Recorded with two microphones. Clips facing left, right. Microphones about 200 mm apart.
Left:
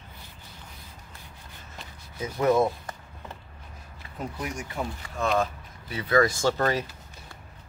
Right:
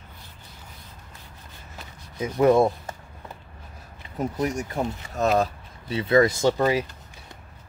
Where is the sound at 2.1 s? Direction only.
25° right (ahead or behind).